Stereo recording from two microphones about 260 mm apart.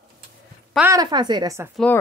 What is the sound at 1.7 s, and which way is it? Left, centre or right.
Speech, centre.